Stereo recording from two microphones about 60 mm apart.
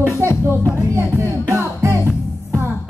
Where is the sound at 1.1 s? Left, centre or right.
Right.